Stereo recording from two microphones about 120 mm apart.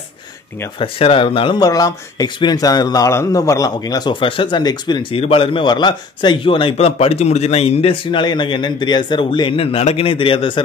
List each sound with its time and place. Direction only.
0.7 s speech: 50° left (ahead or behind)
1.6 s speech: 30° left (ahead or behind)
5.1 s speech: 50° left (ahead or behind)